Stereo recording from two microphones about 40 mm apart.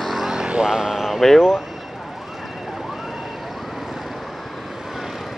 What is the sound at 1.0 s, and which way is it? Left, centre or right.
Speech, centre.